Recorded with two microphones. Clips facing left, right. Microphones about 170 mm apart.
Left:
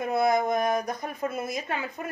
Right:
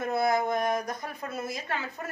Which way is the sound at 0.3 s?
20° left (ahead or behind).